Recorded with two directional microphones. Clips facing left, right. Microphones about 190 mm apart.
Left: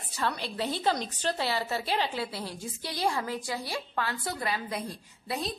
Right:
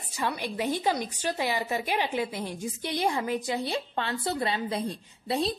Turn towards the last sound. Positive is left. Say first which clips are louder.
# right 6 dB
turn(degrees=-25)  # may be behind; listen again after turning